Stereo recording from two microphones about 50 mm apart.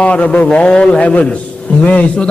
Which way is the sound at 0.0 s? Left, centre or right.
Left.